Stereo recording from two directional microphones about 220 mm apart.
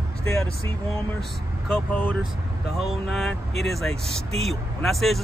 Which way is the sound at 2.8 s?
Centre (ahead or behind).